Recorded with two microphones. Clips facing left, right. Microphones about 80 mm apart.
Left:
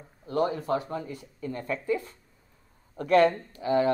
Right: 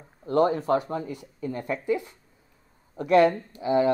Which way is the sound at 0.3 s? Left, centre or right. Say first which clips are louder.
Right 5 dB; right.